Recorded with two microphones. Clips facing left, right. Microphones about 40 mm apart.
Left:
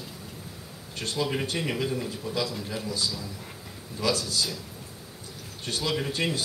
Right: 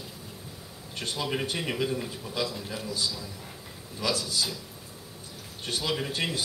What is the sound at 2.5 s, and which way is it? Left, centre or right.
Speech, centre.